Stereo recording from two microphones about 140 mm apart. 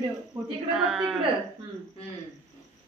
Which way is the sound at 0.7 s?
Centre (ahead or behind).